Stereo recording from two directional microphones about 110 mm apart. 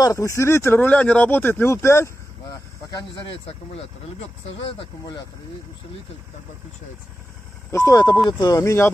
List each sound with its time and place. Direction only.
0.0 s speech: 30° left (ahead or behind)
2.9 s speech: 45° left (ahead or behind)
7.7 s speech: 35° left (ahead or behind)